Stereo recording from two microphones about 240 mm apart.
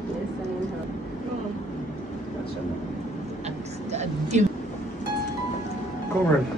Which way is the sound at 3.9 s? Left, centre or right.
Right.